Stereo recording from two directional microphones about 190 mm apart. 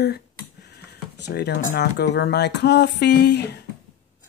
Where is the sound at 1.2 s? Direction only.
60° left (ahead or behind).